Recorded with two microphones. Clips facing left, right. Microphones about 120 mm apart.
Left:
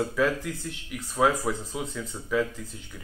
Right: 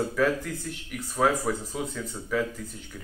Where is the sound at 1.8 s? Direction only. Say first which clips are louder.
Right 1 dB; 5° right (ahead or behind).